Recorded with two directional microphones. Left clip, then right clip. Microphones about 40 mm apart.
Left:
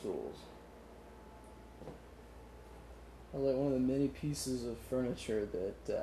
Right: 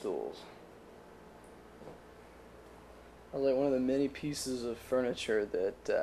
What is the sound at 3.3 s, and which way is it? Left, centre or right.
Speech, centre.